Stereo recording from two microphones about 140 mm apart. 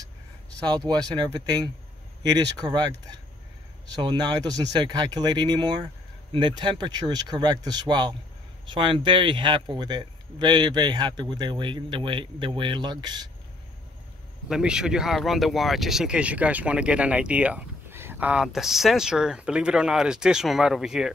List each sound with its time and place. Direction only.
0.7 s speech: 30° right (ahead or behind)
14.5 s speech: 5° right (ahead or behind)